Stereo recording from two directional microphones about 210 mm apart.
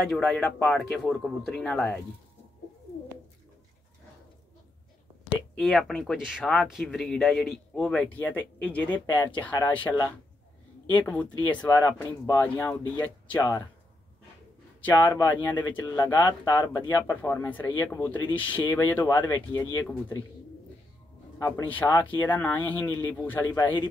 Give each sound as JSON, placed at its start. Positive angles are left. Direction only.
{"t": 0.1, "sound": "speech", "side_deg": 5}
{"t": 5.6, "sound": "speech", "side_deg": 0}
{"t": 9.8, "sound": "speech", "side_deg": 20}
{"t": 10.9, "sound": "speech", "side_deg": 5}
{"t": 11.5, "sound": "speech", "side_deg": 20}
{"t": 12.0, "sound": "speech", "side_deg": 10}
{"t": 15.0, "sound": "speech", "side_deg": 20}
{"t": 21.4, "sound": "speech", "side_deg": 15}